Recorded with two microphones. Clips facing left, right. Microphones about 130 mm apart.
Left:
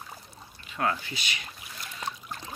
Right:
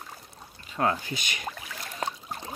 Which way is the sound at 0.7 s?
30° right (ahead or behind).